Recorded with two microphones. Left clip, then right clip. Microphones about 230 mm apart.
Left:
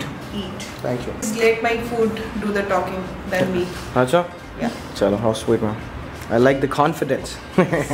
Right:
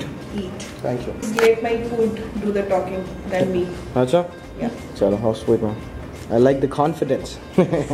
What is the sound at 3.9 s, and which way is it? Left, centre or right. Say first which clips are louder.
Speech: left 1 dB; centre.